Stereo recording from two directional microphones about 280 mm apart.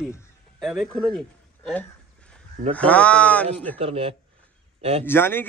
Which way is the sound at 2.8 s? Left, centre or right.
Centre.